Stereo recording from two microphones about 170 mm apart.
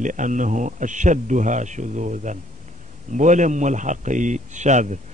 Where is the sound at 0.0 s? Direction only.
50° right (ahead or behind).